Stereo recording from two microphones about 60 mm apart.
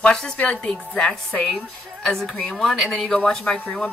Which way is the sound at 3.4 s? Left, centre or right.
Left.